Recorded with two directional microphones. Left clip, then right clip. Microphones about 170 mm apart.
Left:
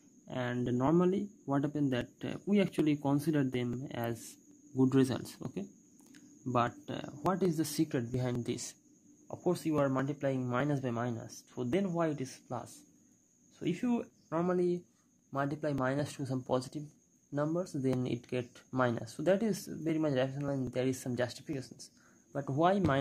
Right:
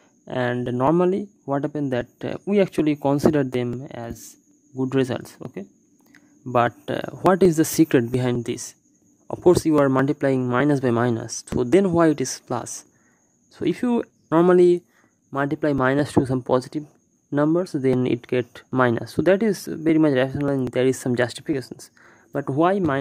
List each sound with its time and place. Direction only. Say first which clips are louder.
0.2 s speech: right 13 dB; 40° right (ahead or behind)
3.9 s speech: right 4 dB; 25° right (ahead or behind)
6.5 s speech: right 12 dB; 30° right (ahead or behind)
8.2 s speech: right 12 dB; 25° right (ahead or behind)
9.3 s speech: right 16 dB; 40° right (ahead or behind)
22.0 s a sound: right 12 dB; 30° right (ahead or behind)